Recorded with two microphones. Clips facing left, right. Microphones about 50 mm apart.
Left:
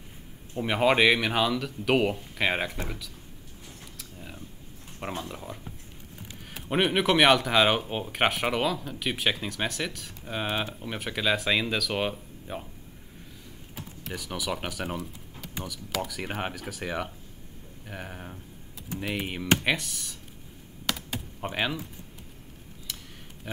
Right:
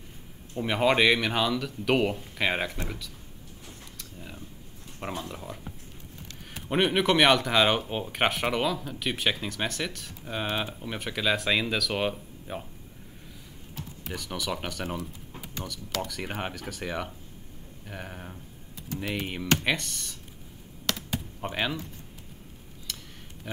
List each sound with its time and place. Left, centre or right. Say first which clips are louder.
0.6 s speech: left 1 dB; centre
4.0 s mechanisms: even; centre
5.1 s speech: even; centre
14.0 s speech: even; centre
20.8 s computer keyboard: right 1 dB; centre
23.5 s speech: even; centre